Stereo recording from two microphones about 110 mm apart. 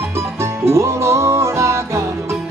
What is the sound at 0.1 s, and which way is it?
Music, 25° right (ahead or behind).